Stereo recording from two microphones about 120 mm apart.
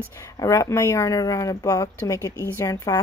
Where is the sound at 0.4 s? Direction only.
25° left (ahead or behind).